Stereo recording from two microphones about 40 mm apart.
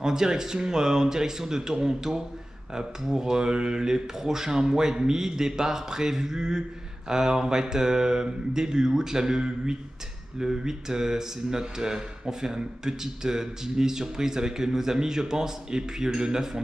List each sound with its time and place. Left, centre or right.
0.0 s speech: centre